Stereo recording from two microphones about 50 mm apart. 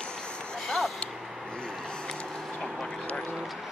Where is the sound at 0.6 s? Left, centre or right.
Centre.